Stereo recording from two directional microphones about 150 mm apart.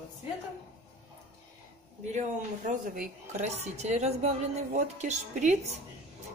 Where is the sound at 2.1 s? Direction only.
55° right (ahead or behind).